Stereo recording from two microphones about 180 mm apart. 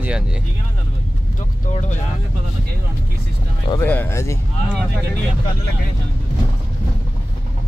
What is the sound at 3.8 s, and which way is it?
Speech, 10° left (ahead or behind).